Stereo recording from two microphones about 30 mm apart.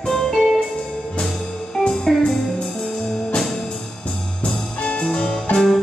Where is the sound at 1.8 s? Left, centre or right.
Left.